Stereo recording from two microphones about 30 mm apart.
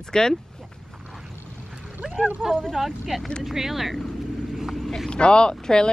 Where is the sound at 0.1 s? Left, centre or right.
Left.